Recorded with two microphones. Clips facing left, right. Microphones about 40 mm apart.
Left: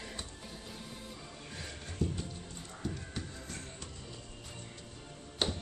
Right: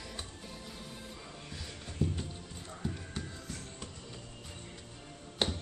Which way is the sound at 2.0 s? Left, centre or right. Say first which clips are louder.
Right 1 dB; centre.